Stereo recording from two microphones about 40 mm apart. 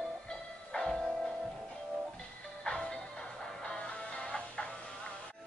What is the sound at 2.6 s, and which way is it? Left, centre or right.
Music, centre.